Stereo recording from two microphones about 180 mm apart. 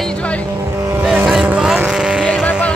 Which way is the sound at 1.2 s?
5° right (ahead or behind).